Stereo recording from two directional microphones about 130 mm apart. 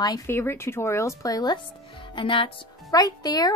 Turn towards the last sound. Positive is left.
turn(degrees=30)  # may be behind; listen again after turning